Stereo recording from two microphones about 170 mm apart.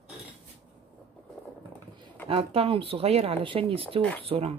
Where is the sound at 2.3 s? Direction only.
35° right (ahead or behind).